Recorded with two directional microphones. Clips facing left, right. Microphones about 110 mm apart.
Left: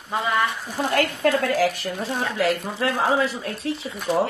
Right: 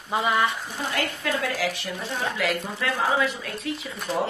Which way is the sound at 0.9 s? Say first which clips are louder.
Left 8 dB; 45° left (ahead or behind).